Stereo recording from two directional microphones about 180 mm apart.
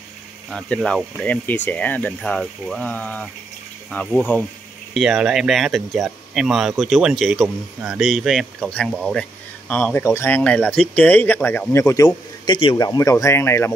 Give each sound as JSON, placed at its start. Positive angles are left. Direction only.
{"t": 0.5, "sound": "speech", "side_deg": 5}